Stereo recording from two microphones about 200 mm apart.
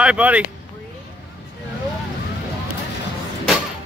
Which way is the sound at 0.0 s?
5° right (ahead or behind).